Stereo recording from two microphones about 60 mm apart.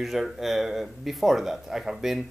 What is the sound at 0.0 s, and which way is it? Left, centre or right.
Speech, centre.